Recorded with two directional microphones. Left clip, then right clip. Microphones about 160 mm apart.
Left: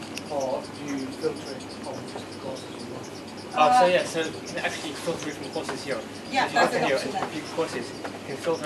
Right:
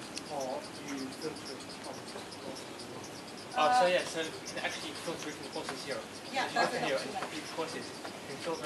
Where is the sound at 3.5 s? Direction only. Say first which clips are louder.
Left 8 dB; 20° left (ahead or behind).